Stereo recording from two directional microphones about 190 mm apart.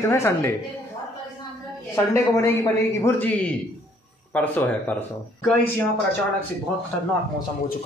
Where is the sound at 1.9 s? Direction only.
15° left (ahead or behind).